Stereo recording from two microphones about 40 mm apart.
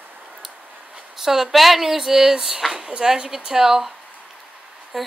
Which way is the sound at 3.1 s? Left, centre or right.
Centre.